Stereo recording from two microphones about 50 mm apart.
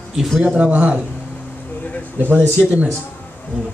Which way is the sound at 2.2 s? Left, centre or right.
Right.